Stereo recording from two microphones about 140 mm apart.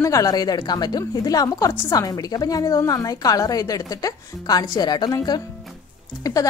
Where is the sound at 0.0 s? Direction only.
25° left (ahead or behind).